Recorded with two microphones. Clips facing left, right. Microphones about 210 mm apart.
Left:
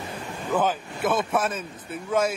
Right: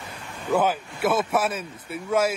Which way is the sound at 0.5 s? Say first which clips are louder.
Right 2 dB; 10° right (ahead or behind).